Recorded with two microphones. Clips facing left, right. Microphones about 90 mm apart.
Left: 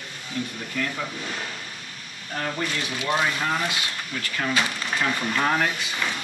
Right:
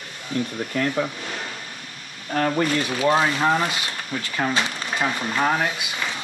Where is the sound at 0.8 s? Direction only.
55° right (ahead or behind).